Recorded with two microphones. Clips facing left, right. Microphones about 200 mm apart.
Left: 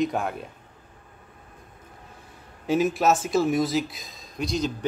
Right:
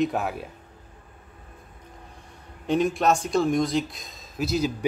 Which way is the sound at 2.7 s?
5° left (ahead or behind).